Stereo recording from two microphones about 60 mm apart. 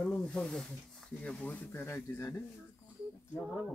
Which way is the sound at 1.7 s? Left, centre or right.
Left.